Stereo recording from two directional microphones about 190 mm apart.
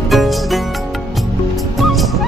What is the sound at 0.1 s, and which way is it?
Music, centre (ahead or behind).